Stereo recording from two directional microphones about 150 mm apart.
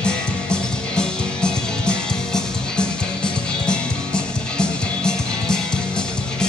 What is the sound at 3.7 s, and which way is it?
Music, 5° left (ahead or behind).